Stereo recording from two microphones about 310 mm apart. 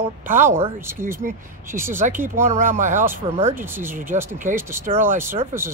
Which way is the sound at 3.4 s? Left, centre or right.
Centre.